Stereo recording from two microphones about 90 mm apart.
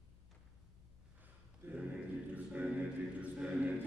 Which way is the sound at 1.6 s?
15° right (ahead or behind).